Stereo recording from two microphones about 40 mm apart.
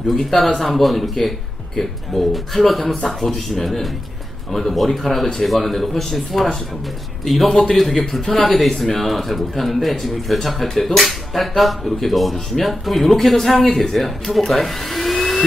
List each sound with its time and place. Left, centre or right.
0.1 s speech: centre